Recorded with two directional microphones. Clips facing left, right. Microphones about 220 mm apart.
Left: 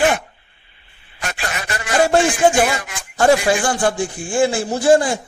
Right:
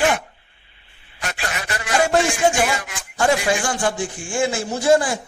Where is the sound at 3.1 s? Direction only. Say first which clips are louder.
Left 4 dB; 35° left (ahead or behind).